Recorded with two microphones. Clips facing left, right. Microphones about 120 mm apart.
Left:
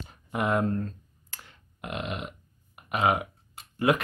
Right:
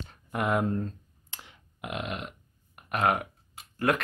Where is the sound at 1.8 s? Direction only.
Centre (ahead or behind).